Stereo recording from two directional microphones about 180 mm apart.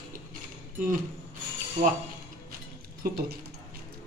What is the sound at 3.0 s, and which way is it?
Speech, 55° right (ahead or behind).